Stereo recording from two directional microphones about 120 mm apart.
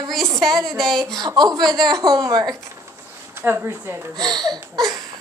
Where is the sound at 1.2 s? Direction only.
35° right (ahead or behind).